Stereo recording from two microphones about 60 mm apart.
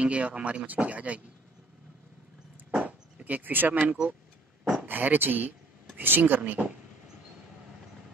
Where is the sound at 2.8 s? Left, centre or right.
Right.